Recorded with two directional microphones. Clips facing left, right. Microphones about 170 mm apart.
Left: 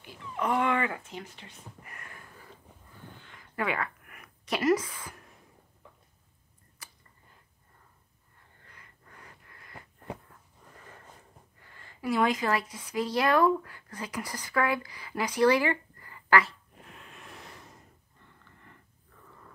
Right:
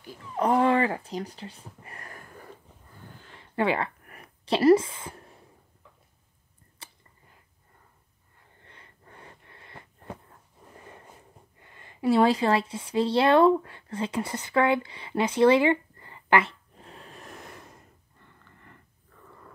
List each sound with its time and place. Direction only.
0.0 s speech: 40° right (ahead or behind)
3.2 s a sound: 30° right (ahead or behind)
6.8 s chewing: 30° right (ahead or behind)
8.6 s wheeze: 30° right (ahead or behind)
10.7 s a sound: 25° right (ahead or behind)
11.6 s a woman's voice: 20° right (ahead or behind); by 17.6 s 50° right (ahead or behind)